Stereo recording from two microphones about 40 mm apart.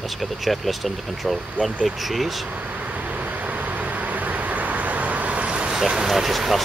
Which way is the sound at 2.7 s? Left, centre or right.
Right.